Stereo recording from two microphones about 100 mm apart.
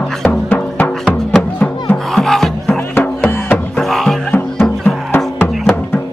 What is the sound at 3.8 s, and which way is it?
Music, 5° left (ahead or behind).